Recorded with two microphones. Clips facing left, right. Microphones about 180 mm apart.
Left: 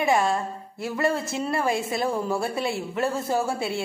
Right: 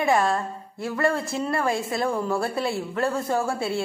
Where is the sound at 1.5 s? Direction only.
20° left (ahead or behind).